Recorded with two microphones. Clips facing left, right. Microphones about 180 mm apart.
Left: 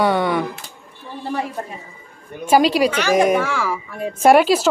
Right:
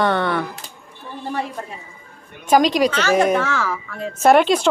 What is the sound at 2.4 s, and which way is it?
A woman's voice, 5° left (ahead or behind).